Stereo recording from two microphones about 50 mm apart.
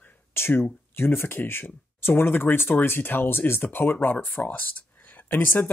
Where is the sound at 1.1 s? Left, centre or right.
Left.